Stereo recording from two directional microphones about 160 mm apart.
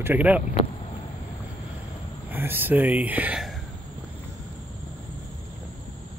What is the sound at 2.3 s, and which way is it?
Speech, 15° right (ahead or behind).